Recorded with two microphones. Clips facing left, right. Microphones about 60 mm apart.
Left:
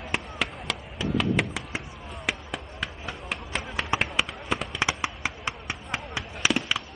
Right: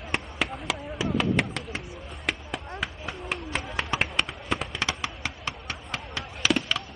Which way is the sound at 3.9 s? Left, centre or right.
Centre.